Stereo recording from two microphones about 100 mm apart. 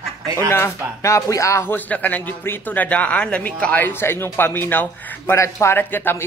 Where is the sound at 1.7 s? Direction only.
15° left (ahead or behind).